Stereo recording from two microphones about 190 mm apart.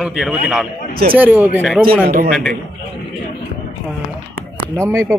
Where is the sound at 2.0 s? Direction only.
50° right (ahead or behind).